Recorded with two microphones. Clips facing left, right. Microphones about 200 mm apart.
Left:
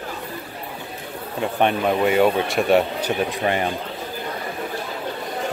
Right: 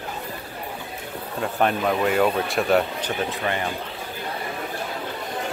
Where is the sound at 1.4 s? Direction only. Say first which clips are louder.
Left 2 dB; centre (ahead or behind).